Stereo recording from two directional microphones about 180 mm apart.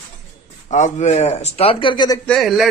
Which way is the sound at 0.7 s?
40° left (ahead or behind).